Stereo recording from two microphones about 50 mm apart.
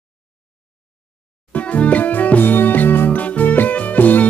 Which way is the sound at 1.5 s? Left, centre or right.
Left.